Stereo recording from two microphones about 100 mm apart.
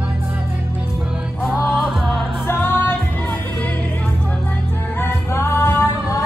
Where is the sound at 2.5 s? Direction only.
20° left (ahead or behind).